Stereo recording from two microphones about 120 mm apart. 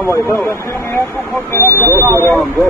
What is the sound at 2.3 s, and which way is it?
Speech, centre (ahead or behind).